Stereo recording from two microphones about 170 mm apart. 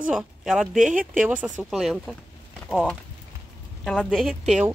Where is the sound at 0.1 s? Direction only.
Centre (ahead or behind).